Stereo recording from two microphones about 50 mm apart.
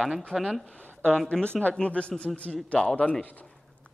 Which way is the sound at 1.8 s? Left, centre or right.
Left.